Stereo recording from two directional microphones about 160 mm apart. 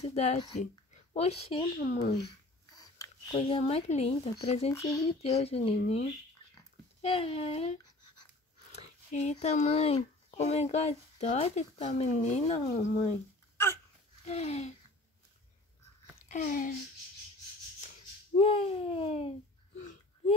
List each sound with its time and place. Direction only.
0.0 s a child's voice: 45° left (ahead or behind)
2.7 s sniff: 25° left (ahead or behind)
3.3 s speech: 35° left (ahead or behind)
4.7 s a sound: 20° left (ahead or behind)
5.0 s speech: 40° left (ahead or behind)
8.7 s a child's voice: 45° left (ahead or behind)
14.2 s a child's voice: 40° left (ahead or behind)
16.3 s speech: 55° left (ahead or behind)
18.4 s speech: 35° left (ahead or behind)